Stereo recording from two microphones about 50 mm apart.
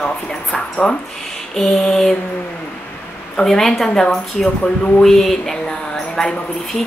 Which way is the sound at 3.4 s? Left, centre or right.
Centre.